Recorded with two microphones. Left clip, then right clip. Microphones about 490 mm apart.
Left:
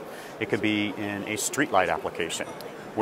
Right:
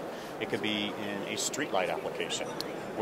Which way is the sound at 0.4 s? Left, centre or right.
Left.